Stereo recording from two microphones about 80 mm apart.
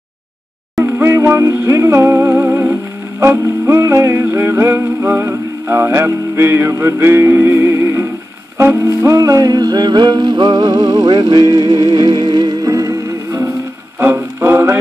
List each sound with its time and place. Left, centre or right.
1.0 s music: right
11.1 s music: right
13.9 s music: right